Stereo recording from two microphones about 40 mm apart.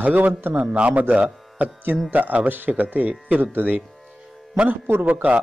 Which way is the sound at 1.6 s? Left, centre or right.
Right.